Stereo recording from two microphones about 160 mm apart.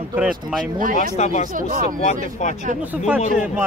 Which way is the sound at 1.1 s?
45° left (ahead or behind).